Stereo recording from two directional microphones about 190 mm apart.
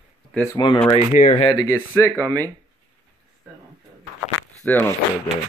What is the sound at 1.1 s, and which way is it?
Speech, 40° left (ahead or behind).